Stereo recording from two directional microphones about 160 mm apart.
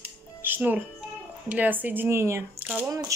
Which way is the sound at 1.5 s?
10° right (ahead or behind).